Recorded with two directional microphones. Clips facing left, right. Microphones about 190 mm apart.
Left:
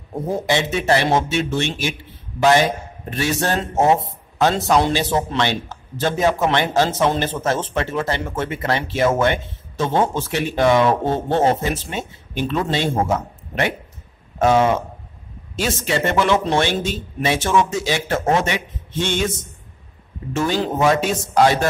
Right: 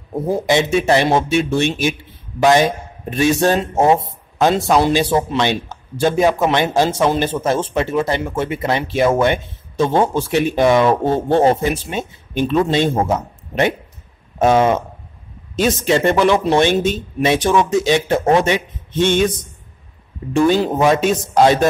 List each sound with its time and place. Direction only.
0.5 s a man's voice: 15° right (ahead or behind)
3.1 s a man's voice: 15° right (ahead or behind)
20.3 s speech: 15° right (ahead or behind)